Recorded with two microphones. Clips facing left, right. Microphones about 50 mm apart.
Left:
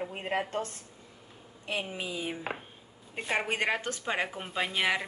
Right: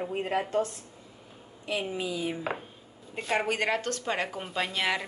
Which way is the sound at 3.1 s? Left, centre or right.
Left.